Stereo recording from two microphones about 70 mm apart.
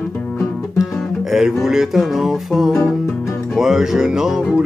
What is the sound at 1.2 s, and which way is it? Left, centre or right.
Music, centre.